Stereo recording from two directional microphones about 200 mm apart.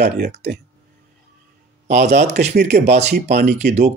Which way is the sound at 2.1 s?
35° right (ahead or behind).